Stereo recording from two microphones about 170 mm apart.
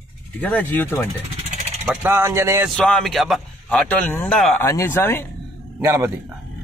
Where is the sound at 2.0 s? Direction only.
15° right (ahead or behind).